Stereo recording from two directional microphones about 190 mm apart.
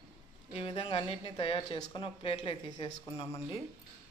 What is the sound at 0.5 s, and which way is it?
Speech, 25° left (ahead or behind).